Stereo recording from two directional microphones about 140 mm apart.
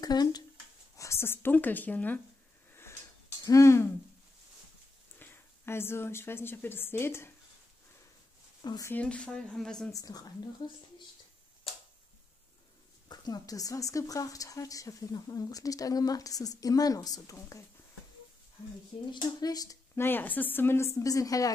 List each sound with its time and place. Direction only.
0.0 s speech: 30° left (ahead or behind); by 2.1 s 10° left (ahead or behind)
2.7 s drawer open or close: 20° left (ahead or behind)
3.4 s speech: 20° left (ahead or behind)
5.2 s speech: 15° left (ahead or behind)
8.6 s speech: 25° left (ahead or behind)
8.9 s a woman's voice: 10° left (ahead or behind)
9.9 s speech: 25° left (ahead or behind)
13.1 s speech: 30° left (ahead or behind)
19.1 s speech: 30° left (ahead or behind)
20.1 s a woman's voice: 15° left (ahead or behind)